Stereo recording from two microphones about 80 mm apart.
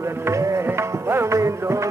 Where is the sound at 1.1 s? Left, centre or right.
Right.